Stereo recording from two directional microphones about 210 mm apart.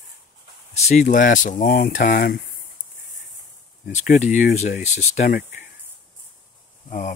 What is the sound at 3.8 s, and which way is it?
Speech, 35° left (ahead or behind).